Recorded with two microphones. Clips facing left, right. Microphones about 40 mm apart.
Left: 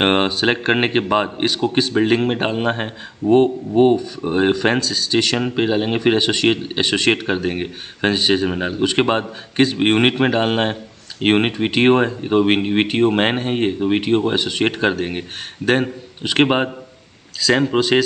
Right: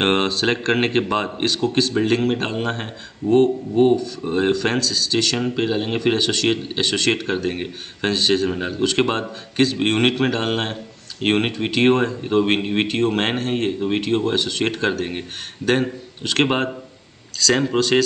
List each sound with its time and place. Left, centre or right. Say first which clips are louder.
0.0 s speech: left 2 dB; centre